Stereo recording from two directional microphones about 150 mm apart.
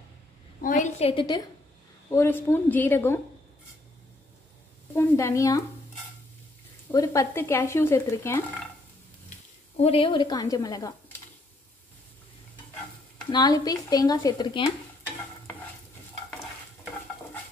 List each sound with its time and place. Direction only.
0.6 s a sound: 60° left (ahead or behind); by 1.2 s 45° left (ahead or behind)
1.2 s speech: 25° left (ahead or behind)
2.0 s speech: 15° left (ahead or behind)
4.9 s speech: 20° left (ahead or behind)
6.9 s speech: 25° left (ahead or behind)
9.8 s speech: 40° left (ahead or behind)
13.3 s speech: 25° left (ahead or behind)